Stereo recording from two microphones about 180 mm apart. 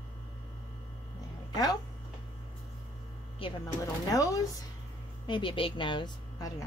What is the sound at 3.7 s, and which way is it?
A woman's voice, 20° left (ahead or behind).